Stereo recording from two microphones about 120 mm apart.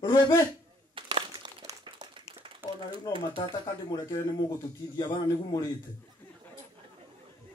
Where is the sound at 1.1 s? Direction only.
40° right (ahead or behind).